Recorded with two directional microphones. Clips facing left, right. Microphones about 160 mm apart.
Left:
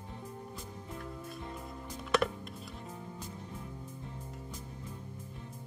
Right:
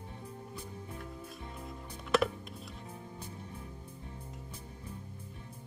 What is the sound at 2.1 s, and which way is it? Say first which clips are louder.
Music: right 1 dB; centre (ahead or behind).